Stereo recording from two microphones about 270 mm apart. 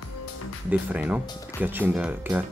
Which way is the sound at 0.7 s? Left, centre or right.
Centre.